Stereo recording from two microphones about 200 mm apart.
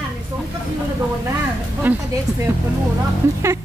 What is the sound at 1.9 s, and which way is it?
Speech, 10° right (ahead or behind).